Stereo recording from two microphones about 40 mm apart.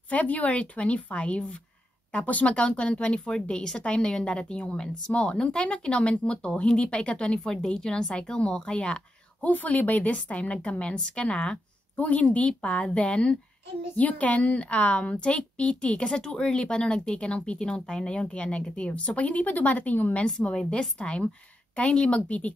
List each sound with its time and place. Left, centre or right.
0.1 s a woman's voice: left
9.4 s a woman's voice: left
12.0 s a woman's voice: left
13.9 s a woman's voice: left
21.0 s a woman's voice: left